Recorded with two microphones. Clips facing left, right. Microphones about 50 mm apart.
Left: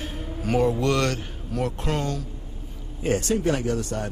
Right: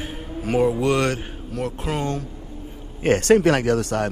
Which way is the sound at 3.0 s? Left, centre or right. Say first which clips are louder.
Right 8 dB; right.